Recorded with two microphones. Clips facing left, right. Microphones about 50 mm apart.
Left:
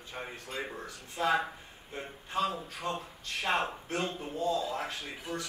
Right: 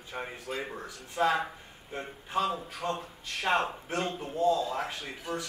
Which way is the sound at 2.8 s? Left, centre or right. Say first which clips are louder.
Right 2 dB; centre.